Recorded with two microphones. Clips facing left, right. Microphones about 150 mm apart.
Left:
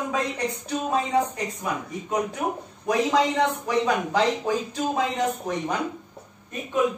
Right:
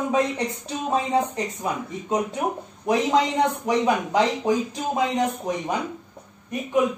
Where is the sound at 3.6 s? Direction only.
20° right (ahead or behind).